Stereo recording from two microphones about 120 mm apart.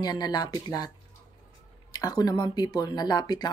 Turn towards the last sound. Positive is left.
turn(degrees=35)  # may be behind; listen again after turning